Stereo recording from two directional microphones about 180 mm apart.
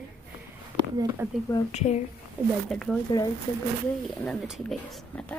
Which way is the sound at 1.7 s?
40° left (ahead or behind).